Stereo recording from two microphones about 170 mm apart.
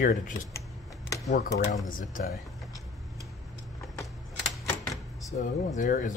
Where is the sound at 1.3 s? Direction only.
90° left.